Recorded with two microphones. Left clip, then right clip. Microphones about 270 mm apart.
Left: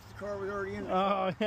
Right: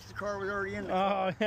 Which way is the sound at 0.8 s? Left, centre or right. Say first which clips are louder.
Left 1 dB; centre.